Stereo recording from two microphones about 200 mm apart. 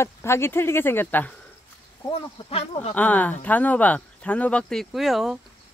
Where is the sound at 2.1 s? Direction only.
30° left (ahead or behind).